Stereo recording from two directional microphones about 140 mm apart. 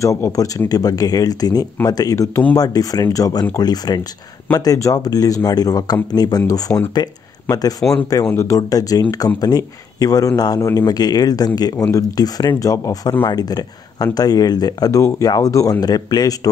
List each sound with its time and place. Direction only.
0.0 s speech: 20° left (ahead or behind)